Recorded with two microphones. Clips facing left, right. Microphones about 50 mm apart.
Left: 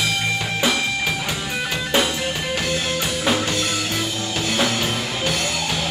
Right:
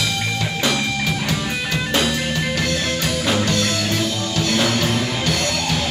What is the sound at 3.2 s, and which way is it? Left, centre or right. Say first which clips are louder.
Music: right 1 dB; centre.